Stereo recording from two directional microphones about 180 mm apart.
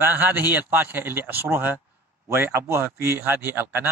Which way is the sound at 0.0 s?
10° right (ahead or behind).